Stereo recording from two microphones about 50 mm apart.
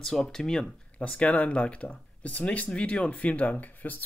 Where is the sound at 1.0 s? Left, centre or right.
Left.